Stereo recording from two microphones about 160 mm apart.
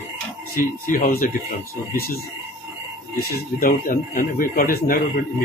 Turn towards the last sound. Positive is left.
turn(degrees=60)  # may be behind; listen again after turning